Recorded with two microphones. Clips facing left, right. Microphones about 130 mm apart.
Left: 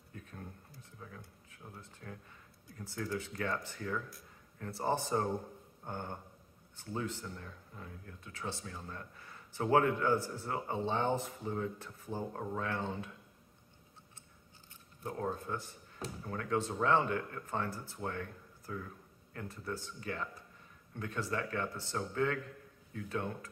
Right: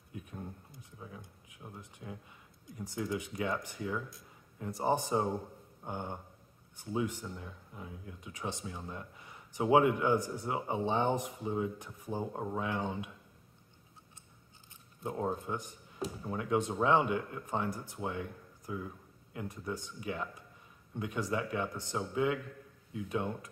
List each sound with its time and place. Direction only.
0.1 s a sound: 15° right (ahead or behind)
2.6 s speech: 15° right (ahead or behind)
15.0 s speech: 20° right (ahead or behind)